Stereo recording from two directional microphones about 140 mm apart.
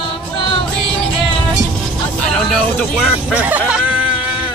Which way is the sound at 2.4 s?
Centre (ahead or behind).